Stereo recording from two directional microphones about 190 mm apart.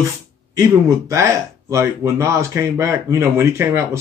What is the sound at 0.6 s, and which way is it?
Speech, 15° right (ahead or behind).